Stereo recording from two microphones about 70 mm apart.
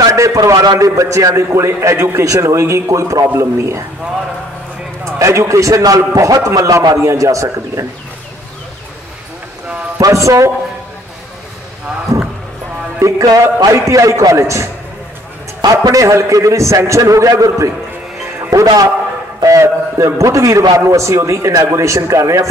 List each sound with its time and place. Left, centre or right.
0.0 s a sound: right
0.4 s a man's voice: right
5.0 s a man's voice: right
9.9 s a man's voice: right
13.0 s music: right
13.7 s a man's voice: right
15.9 s a man's voice: right
18.5 s music: right
19.4 s a man's voice: right